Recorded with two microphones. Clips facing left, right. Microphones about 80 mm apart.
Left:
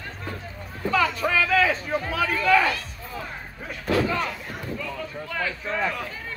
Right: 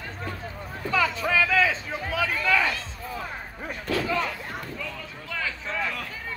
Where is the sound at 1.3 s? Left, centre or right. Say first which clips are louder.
Even; centre.